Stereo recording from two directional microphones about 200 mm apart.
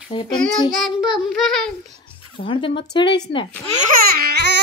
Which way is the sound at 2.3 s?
25° left (ahead or behind).